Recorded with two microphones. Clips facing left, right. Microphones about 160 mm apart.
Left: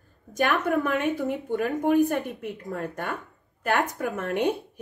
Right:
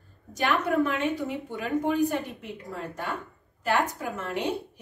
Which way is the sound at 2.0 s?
55° left (ahead or behind).